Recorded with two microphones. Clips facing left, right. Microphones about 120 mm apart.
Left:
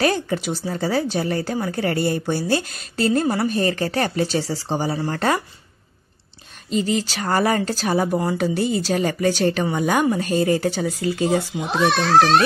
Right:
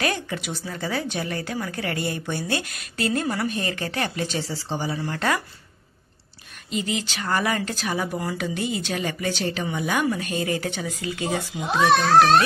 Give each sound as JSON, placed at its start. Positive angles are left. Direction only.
{"t": 0.0, "sound": "speech", "side_deg": 35}
{"t": 6.7, "sound": "speech", "side_deg": 35}